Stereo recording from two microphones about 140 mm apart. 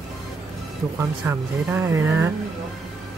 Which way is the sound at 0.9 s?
20° right (ahead or behind).